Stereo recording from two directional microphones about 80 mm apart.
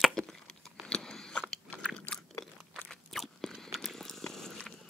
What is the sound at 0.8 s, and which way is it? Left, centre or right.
Biting, centre.